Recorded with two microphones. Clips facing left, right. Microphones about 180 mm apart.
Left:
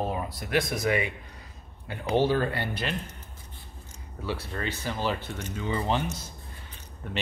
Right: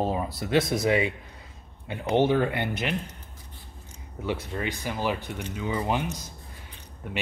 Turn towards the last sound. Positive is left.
turn(degrees=-15)  # may be behind; listen again after turning